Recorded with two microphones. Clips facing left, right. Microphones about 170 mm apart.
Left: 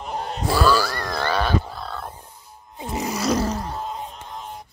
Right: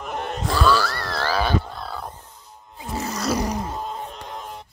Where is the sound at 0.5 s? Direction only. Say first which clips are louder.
Left 1 dB; 5° left (ahead or behind).